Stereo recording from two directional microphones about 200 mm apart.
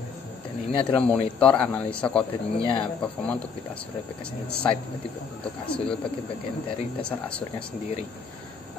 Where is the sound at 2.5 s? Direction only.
25° left (ahead or behind).